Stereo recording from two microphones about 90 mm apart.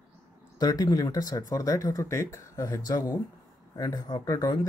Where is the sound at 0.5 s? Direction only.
40° left (ahead or behind).